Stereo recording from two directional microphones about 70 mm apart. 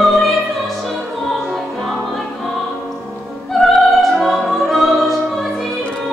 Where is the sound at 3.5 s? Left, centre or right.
Centre.